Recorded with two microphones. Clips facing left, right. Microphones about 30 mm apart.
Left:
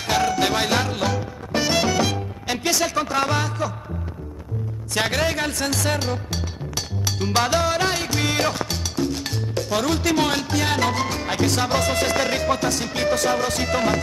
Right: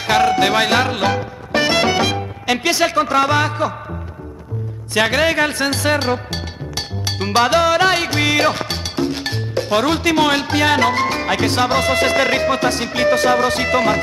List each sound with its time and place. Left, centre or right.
0.0 s music: right
4.9 s music: right
7.1 s salsa music: right
7.7 s music: right